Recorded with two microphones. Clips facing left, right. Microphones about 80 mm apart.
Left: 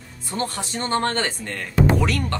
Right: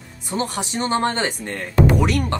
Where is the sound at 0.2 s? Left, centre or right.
Centre.